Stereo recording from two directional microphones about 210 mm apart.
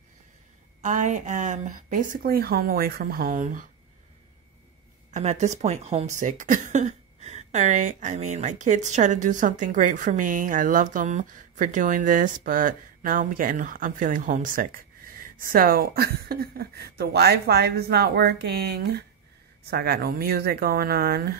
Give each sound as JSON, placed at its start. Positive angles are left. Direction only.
{"t": 0.8, "sound": "speech", "side_deg": -35}
{"t": 5.1, "sound": "speech", "side_deg": -35}